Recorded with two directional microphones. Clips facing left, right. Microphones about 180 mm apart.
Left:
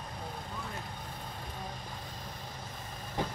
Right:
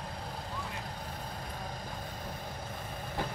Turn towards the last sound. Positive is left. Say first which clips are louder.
# left 1 dB
turn(degrees=20)  # may be behind; listen again after turning